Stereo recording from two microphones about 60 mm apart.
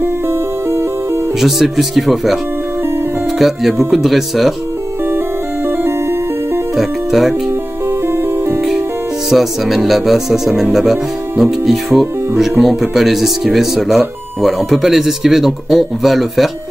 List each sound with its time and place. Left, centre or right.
0.0 s music: right
1.4 s speech: centre
5.7 s music: right
6.7 s music: centre
8.1 s music: right
8.5 s music: centre
9.3 s speech: centre